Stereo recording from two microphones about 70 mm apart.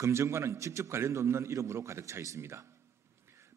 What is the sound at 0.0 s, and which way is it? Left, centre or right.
A man's voice, right.